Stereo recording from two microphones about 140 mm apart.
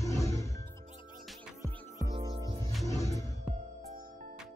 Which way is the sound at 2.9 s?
25° left (ahead or behind).